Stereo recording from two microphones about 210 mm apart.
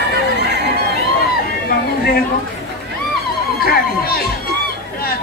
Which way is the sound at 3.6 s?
45° left (ahead or behind).